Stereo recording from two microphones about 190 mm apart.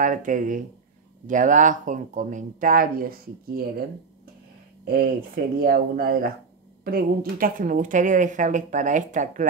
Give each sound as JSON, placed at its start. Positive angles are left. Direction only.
{"t": 0.0, "sound": "a woman's voice", "side_deg": -45}
{"t": 4.8, "sound": "a woman's voice", "side_deg": -50}